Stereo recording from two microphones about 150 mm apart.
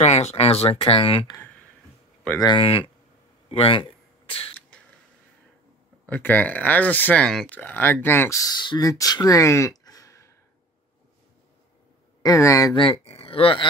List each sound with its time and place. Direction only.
0.0 s speech: 45° left (ahead or behind)
2.4 s speech: 35° left (ahead or behind)
3.4 s a sound: 35° left (ahead or behind)
4.6 s a sound: 5° left (ahead or behind)
6.0 s speech: 10° left (ahead or behind)
12.2 s speech: 20° left (ahead or behind)
12.7 s speech: 35° left (ahead or behind)